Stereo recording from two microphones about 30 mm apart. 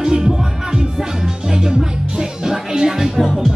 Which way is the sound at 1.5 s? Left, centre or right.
Centre.